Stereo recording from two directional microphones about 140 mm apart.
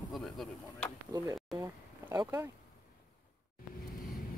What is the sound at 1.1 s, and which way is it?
Speech, 25° right (ahead or behind).